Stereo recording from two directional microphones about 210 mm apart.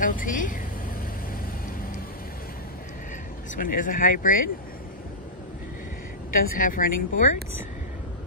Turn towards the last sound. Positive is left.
turn(degrees=40)  # may be behind; listen again after turning